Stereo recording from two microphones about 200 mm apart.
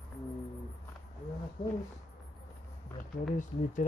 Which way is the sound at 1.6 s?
25° left (ahead or behind).